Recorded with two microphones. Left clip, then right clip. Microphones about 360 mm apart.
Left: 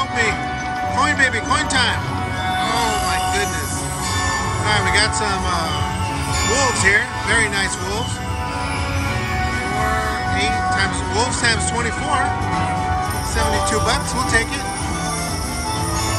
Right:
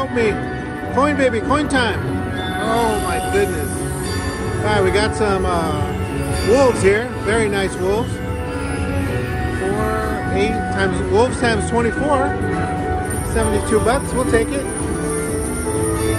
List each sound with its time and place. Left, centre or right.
0.9 s speech: centre
4.6 s speech: centre
10.3 s speech: centre
13.7 s speech: centre